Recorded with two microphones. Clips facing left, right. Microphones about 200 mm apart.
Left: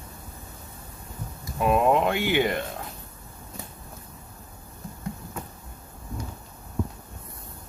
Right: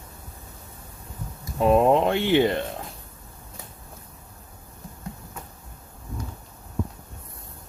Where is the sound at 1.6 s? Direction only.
30° right (ahead or behind).